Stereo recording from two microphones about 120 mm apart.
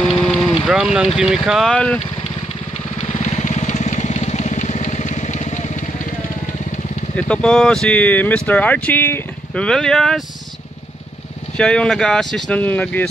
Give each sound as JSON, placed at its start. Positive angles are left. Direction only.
{"t": 0.7, "sound": "speech", "side_deg": -5}
{"t": 1.7, "sound": "speech", "side_deg": 10}
{"t": 3.0, "sound": "vehicle", "side_deg": 65}
{"t": 7.2, "sound": "speech", "side_deg": 5}
{"t": 11.5, "sound": "speech", "side_deg": 5}